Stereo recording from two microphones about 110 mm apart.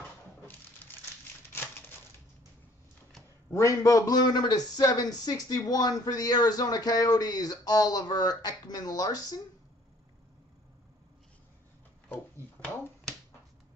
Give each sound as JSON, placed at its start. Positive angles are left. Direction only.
{"t": 3.4, "sound": "a man's voice", "side_deg": 25}